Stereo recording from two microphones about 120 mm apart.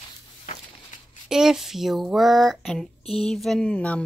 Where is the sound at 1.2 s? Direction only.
5° right (ahead or behind).